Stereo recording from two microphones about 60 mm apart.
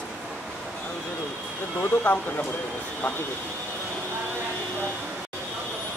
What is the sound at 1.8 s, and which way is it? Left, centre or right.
Speech, left.